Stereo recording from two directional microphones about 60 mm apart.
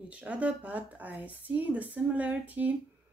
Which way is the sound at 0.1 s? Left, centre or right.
Right.